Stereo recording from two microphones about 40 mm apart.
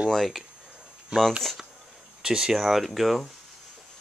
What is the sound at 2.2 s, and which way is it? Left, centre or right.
Speech, centre.